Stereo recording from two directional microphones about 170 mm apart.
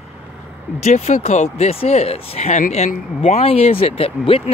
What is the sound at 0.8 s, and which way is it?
Speech, 40° left (ahead or behind).